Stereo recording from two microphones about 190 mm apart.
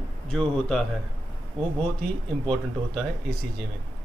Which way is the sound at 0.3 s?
5° left (ahead or behind).